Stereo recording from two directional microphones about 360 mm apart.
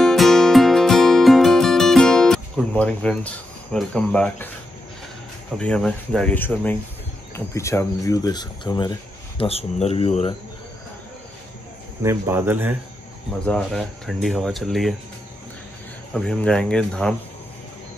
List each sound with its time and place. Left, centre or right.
0.0 s music: centre
5.6 s speech: centre
12.0 s speech: centre
16.1 s speech: centre